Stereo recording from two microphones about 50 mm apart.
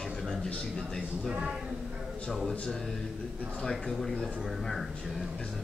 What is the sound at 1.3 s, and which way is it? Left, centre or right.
Speech, centre.